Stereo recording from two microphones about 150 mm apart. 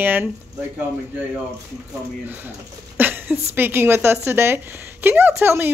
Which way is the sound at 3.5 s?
15° right (ahead or behind).